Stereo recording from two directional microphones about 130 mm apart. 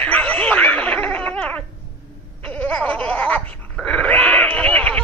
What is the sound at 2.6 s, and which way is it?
Gargling, 10° left (ahead or behind).